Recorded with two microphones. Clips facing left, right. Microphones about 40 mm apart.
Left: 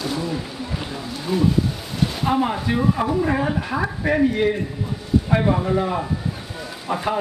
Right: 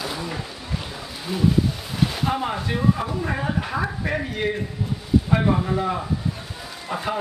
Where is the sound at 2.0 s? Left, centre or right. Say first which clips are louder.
Left 3 dB; centre.